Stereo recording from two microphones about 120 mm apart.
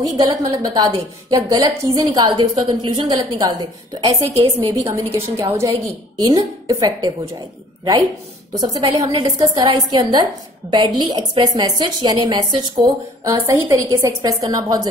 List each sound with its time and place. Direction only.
0.1 s a woman's voice: 30° right (ahead or behind)
8.5 s a woman's voice: 30° right (ahead or behind)
13.2 s a woman's voice: 25° right (ahead or behind)